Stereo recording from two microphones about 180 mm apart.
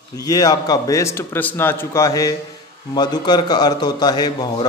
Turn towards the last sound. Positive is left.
turn(degrees=20)  # may be behind; listen again after turning